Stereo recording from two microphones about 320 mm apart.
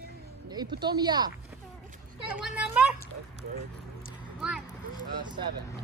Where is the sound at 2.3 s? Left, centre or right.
Centre.